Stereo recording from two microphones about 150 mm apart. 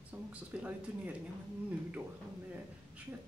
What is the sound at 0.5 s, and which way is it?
Speech, 10° right (ahead or behind).